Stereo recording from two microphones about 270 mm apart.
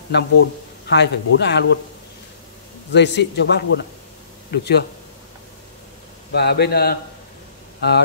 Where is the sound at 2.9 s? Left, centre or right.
Left.